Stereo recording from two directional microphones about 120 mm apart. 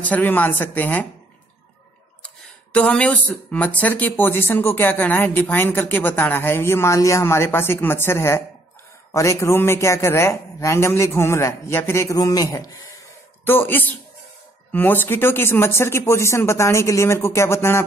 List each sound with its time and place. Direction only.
0.0 s speech: 15° left (ahead or behind)
2.2 s a man's voice: 10° left (ahead or behind); by 12.7 s 30° left (ahead or behind)
13.5 s a man's voice: 15° left (ahead or behind)